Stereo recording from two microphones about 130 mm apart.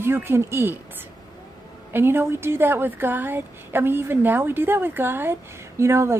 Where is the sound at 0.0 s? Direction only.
15° right (ahead or behind).